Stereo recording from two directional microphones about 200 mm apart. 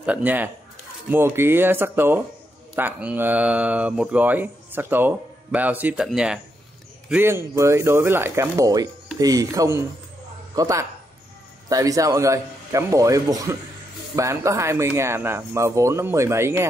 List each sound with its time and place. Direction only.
0.0 s speech: 5° right (ahead or behind)